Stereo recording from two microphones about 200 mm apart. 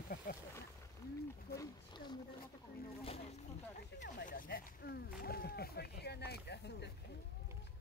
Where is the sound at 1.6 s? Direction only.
20° left (ahead or behind).